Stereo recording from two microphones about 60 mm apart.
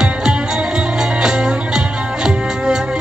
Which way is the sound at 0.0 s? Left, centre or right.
Centre.